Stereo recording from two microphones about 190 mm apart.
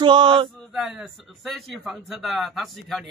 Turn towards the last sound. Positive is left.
turn(degrees=0)  # may be behind; listen again after turning